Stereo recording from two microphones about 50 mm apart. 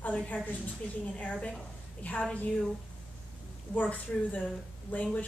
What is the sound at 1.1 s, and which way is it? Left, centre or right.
Speech, left.